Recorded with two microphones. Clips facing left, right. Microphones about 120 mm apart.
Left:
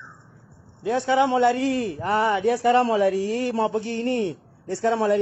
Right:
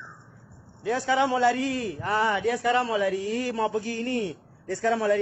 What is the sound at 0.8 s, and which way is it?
A man's voice, 25° left (ahead or behind).